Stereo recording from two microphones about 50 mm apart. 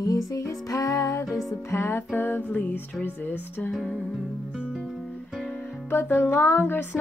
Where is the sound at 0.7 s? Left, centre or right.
Left.